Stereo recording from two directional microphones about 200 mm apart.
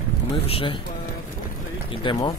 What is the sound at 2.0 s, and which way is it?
Speech, 20° left (ahead or behind).